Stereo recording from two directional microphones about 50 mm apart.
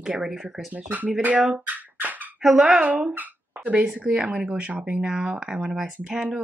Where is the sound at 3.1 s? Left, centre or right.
Right.